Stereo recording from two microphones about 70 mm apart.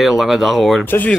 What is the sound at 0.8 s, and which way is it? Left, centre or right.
Speech, left.